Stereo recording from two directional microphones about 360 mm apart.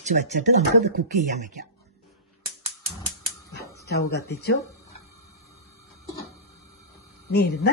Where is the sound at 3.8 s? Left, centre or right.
Left.